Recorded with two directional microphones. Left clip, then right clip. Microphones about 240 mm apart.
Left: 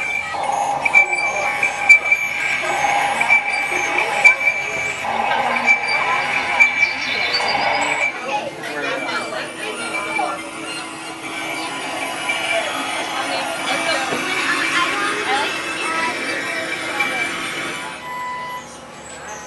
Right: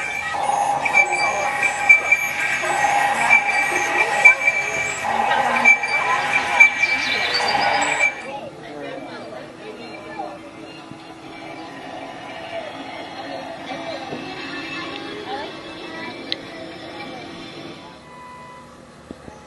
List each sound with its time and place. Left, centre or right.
0.0 s music: centre
13.7 s music: left